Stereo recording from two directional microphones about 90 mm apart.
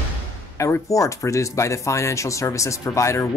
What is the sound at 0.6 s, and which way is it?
Speech, 35° left (ahead or behind).